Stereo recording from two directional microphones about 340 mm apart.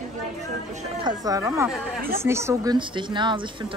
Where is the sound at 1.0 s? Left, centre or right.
Centre.